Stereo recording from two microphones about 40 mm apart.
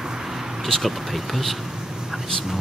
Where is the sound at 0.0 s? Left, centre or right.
Centre.